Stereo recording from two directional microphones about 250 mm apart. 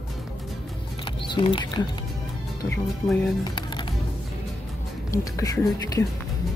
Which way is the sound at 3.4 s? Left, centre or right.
Centre.